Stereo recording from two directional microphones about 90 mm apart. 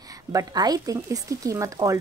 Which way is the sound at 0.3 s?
40° right (ahead or behind).